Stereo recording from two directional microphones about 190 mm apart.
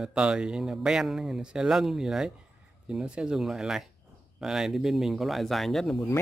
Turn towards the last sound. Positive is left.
turn(degrees=0)  # may be behind; listen again after turning